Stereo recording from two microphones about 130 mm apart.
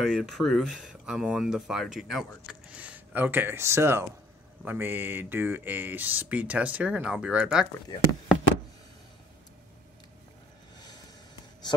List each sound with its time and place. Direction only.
0.0 s speech: centre (ahead or behind)